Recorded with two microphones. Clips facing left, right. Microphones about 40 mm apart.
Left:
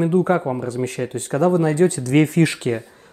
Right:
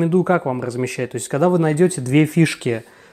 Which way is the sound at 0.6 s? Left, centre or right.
Right.